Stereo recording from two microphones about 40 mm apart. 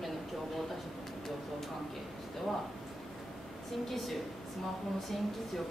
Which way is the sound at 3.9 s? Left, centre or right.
Centre.